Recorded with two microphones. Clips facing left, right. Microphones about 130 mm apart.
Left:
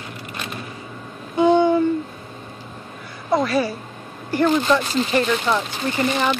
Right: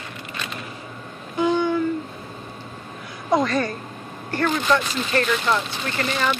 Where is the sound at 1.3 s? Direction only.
25° left (ahead or behind).